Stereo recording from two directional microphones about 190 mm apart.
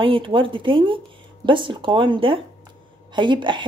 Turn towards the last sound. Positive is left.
turn(degrees=-25)  # may be behind; listen again after turning